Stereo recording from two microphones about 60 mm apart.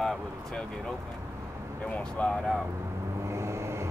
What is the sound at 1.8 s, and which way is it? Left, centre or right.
Speech, left.